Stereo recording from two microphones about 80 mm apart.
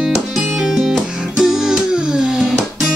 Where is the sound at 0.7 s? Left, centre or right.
Centre.